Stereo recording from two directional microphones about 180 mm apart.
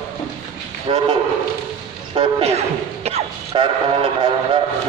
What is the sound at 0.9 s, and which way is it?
Speech, 30° right (ahead or behind).